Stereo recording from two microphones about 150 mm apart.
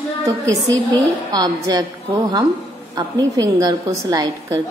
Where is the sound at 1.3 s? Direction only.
25° right (ahead or behind).